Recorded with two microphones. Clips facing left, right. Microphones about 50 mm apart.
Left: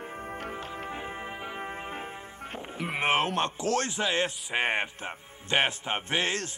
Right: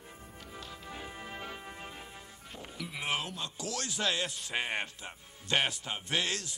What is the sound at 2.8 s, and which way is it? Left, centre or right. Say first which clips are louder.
Speech: left 10 dB; left.